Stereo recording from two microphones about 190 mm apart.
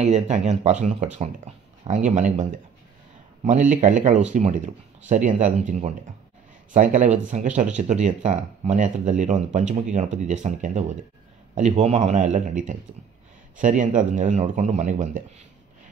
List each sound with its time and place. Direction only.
0.0 s speech: 40° right (ahead or behind)
3.4 s speech: 40° right (ahead or behind)